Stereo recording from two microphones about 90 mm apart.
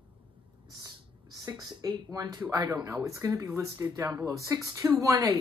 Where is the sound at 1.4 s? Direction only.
45° right (ahead or behind).